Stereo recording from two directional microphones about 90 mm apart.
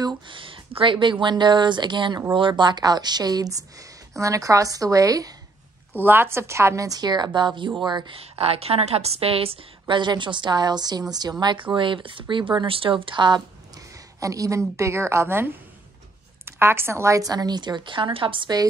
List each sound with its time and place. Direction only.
0.0 s a sound: 70° right (ahead or behind)
1.2 s a woman's voice: 60° right (ahead or behind)
4.2 s a woman's voice: 35° right (ahead or behind)
5.9 s a woman's voice: 25° right (ahead or behind); by 8.2 s 55° right (ahead or behind)
8.2 s a woman's voice: 90° right; by 13.4 s 60° right (ahead or behind)
14.2 s a woman's voice: 40° right (ahead or behind); by 18.5 s 70° right (ahead or behind)